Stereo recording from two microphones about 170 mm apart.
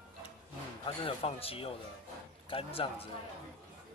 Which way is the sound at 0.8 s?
35° left (ahead or behind).